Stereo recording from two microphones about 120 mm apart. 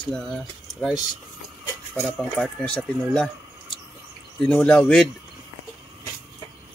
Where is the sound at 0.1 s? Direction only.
5° left (ahead or behind).